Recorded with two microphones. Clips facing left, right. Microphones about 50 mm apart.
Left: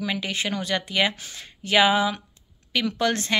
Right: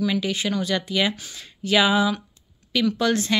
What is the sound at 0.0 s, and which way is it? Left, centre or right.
Speech, left.